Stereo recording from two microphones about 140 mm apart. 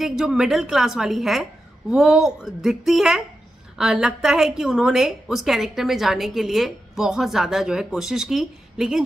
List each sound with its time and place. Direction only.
0.0 s a woman's voice: 5° right (ahead or behind)